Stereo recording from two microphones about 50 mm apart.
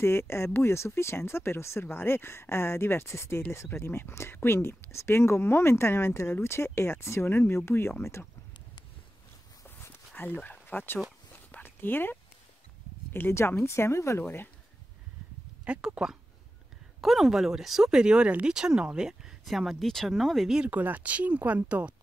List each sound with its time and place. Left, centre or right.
0.0 s speech: left
3.7 s speech: left
7.2 s speech: left
7.5 s speech: left
9.8 s a sound: left
10.2 s speech: left
13.6 s speech: left
15.6 s speech: right
17.0 s speech: centre
19.4 s speech: centre
20.4 s speech: centre
20.7 s speech: right